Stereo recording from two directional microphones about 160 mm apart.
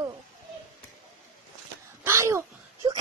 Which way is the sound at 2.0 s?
15° right (ahead or behind).